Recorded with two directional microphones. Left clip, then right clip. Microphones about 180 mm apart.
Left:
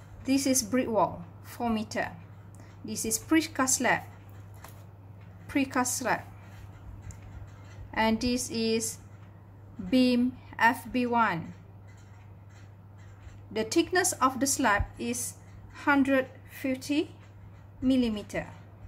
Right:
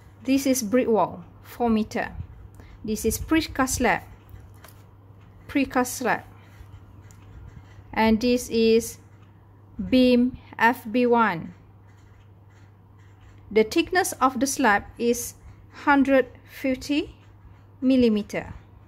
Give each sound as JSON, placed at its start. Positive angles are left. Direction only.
{"t": 0.2, "sound": "a woman's voice", "side_deg": -35}
{"t": 5.5, "sound": "a woman's voice", "side_deg": -35}
{"t": 7.9, "sound": "a woman's voice", "side_deg": -35}
{"t": 13.5, "sound": "a woman's voice", "side_deg": -35}